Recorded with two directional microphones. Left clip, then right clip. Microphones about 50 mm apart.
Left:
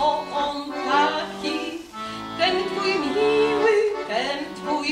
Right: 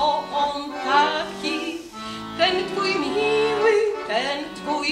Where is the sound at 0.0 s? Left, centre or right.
Right.